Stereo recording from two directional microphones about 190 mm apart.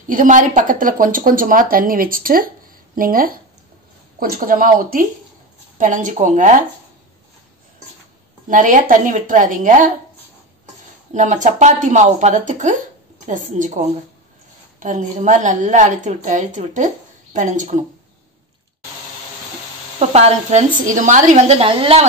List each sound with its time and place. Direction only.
0.1 s a woman's voice: 45° right (ahead or behind)
8.5 s a woman's voice: 45° right (ahead or behind)
11.1 s a woman's voice: 40° right (ahead or behind)
20.0 s a woman's voice: 35° right (ahead or behind)